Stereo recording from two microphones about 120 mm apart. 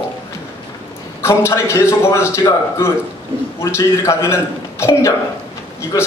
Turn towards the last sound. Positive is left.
turn(degrees=30)  # may be behind; listen again after turning